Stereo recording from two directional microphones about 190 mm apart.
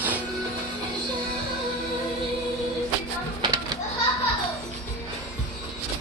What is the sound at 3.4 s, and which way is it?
Children playing, 20° right (ahead or behind).